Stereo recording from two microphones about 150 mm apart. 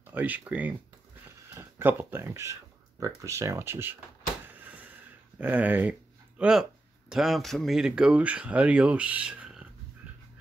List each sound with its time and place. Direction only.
0.0 s speech: 10° right (ahead or behind)
5.4 s speech: 10° right (ahead or behind)